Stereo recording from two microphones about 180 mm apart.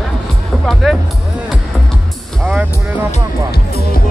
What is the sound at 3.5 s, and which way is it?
Music, 60° left (ahead or behind).